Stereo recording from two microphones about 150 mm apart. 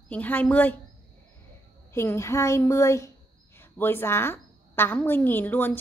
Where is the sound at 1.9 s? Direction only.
15° left (ahead or behind).